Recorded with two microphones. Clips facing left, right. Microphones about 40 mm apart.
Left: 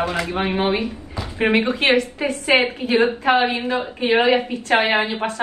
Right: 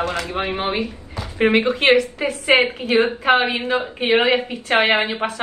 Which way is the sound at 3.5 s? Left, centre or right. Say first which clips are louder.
Even; right.